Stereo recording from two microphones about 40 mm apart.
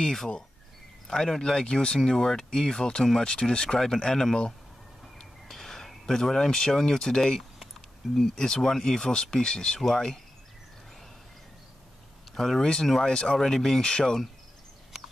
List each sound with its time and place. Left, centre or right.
0.0 s speech: centre
5.5 s speech: centre
8.0 s speech: centre
8.4 s speech: centre
12.4 s speech: centre